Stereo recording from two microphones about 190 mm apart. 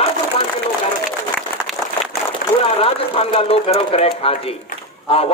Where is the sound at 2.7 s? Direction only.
30° left (ahead or behind).